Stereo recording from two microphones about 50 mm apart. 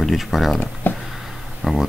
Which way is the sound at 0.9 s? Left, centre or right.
Left.